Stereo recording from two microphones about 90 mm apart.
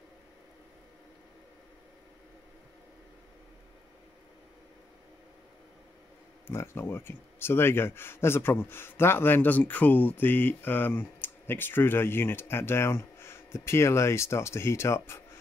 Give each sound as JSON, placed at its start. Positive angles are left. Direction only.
{"t": 6.4, "sound": "speech", "side_deg": 30}